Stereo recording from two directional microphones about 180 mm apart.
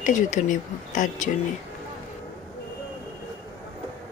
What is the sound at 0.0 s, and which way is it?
Speech, 45° left (ahead or behind).